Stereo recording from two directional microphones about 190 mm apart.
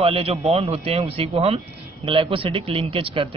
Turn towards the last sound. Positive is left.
turn(degrees=-30)  # may be behind; listen again after turning